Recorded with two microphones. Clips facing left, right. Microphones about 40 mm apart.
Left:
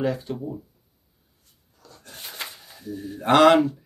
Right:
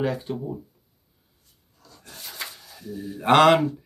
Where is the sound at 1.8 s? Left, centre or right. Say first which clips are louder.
Left 1 dB; left.